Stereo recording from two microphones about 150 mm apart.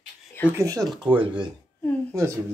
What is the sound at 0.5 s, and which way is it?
Speech, 20° right (ahead or behind).